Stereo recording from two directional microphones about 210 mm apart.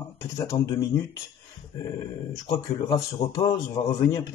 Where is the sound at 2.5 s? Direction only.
15° left (ahead or behind).